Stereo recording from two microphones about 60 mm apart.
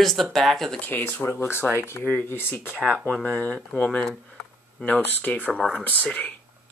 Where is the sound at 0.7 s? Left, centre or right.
Left.